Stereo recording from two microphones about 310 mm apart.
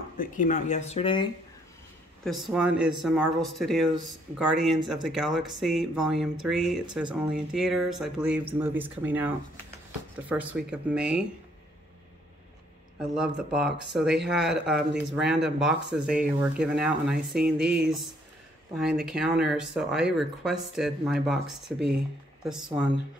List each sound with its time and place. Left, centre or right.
0.2 s speech: left
2.2 s speech: centre
13.0 s speech: centre